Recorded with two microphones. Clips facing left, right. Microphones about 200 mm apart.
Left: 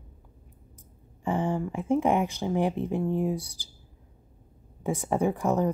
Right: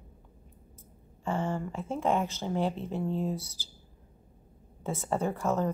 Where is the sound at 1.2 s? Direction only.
15° left (ahead or behind).